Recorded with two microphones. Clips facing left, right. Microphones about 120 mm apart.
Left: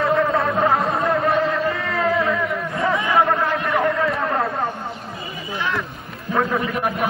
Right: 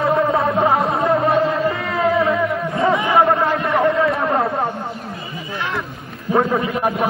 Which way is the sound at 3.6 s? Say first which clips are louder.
Right 4 dB; 25° right (ahead or behind).